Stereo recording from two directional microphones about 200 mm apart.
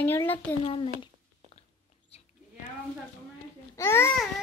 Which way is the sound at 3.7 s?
15° left (ahead or behind).